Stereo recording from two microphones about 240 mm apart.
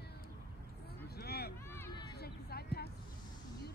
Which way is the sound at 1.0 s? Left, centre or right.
Left.